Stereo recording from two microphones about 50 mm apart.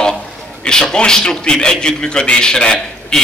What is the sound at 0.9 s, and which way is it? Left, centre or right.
A man's voice, centre.